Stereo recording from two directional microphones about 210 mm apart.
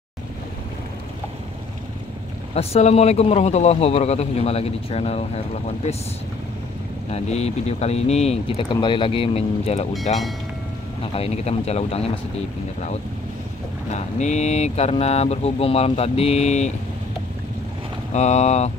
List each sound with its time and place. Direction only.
2.5 s speech: 30° left (ahead or behind)
7.1 s speech: 30° left (ahead or behind)
11.1 s speech: 30° left (ahead or behind)
13.9 s speech: 35° left (ahead or behind)
18.1 s speech: 35° left (ahead or behind)